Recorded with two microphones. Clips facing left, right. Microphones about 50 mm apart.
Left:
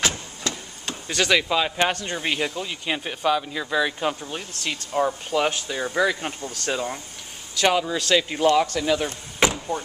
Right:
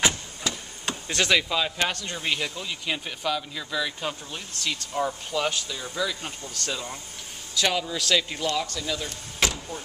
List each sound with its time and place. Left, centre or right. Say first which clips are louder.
0.4 s hammer: left 1 dB; centre
1.0 s speech: left 2 dB; centre
1.5 s speech: left 4 dB; centre
8.4 s speech: left 9 dB; left
8.7 s speech: left 8 dB; left
9.4 s vehicle: left 6 dB; left